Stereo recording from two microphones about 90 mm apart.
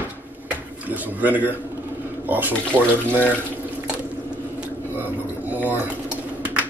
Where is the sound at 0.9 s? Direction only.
20° right (ahead or behind).